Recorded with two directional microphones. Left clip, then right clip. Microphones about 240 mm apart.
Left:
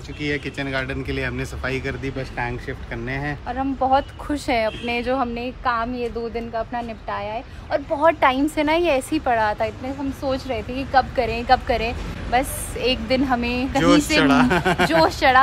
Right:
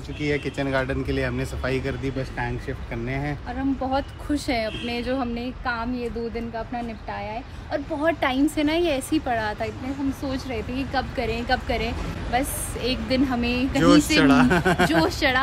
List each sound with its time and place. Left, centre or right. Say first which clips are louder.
0.2 s speech: even; centre
3.8 s speech: left 7 dB; centre
13.7 s speech: left 1 dB; centre
15.0 s speech: left 5 dB; centre